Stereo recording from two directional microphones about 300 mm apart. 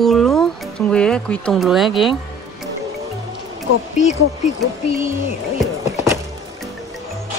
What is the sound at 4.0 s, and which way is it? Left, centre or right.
Speech, left.